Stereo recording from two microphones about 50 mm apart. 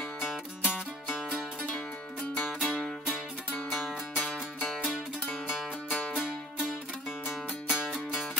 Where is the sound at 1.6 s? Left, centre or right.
Centre.